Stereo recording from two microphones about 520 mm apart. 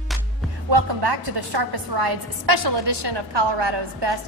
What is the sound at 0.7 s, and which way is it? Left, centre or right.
A woman's voice, right.